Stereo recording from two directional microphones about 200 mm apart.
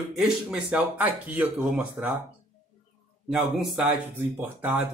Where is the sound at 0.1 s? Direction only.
5° right (ahead or behind).